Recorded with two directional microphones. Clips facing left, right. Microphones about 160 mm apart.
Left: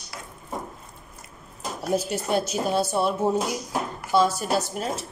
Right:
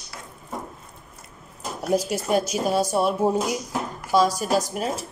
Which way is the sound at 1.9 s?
10° right (ahead or behind).